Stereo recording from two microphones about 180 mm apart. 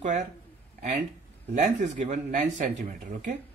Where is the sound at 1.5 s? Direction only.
40° right (ahead or behind).